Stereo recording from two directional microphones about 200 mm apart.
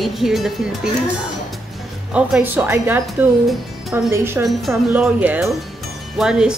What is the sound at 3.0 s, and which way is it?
Speech, centre (ahead or behind).